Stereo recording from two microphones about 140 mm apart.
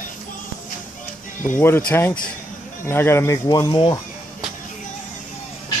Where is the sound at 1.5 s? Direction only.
15° left (ahead or behind).